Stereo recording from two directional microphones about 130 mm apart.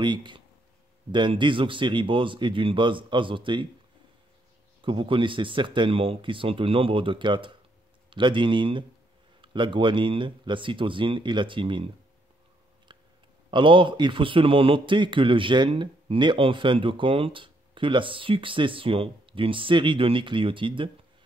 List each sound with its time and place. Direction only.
0.0 s a man's voice: 35° right (ahead or behind)
4.8 s a man's voice: 40° right (ahead or behind)
12.9 s a sound: 35° right (ahead or behind)
13.5 s a man's voice: 40° right (ahead or behind)